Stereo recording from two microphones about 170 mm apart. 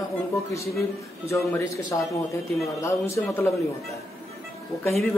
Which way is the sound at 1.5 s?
20° left (ahead or behind).